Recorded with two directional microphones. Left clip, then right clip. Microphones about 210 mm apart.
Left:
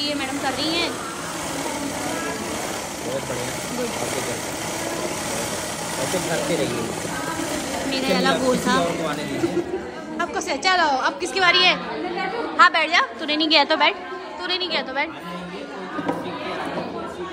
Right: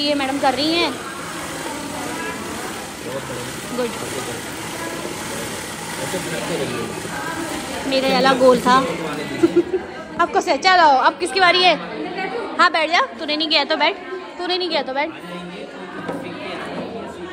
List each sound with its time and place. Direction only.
0.0 s a woman's voice: 5° left (ahead or behind)
7.9 s a woman's voice: 5° left (ahead or behind)
10.1 s a woman's voice: centre (ahead or behind)
13.4 s a woman's voice: 20° left (ahead or behind)